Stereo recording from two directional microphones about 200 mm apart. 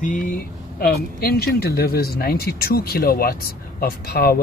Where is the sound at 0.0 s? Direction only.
40° left (ahead or behind).